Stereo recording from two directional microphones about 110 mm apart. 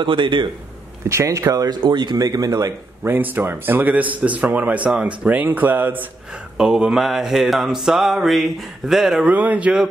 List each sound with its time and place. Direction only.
0.0 s a man's voice: 45° right (ahead or behind)
1.0 s speech: 30° right (ahead or behind)
1.8 s speech: 45° right (ahead or behind)
3.0 s a man's voice: 15° right (ahead or behind)
6.5 s mantra: 5° right (ahead or behind)
9.3 s a man's voice: 15° right (ahead or behind)